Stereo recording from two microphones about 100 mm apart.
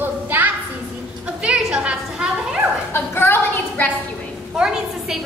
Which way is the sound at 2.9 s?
20° left (ahead or behind).